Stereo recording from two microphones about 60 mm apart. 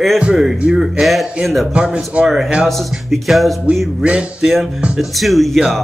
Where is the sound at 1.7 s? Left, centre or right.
Centre.